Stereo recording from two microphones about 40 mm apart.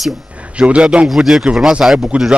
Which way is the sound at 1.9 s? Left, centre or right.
Right.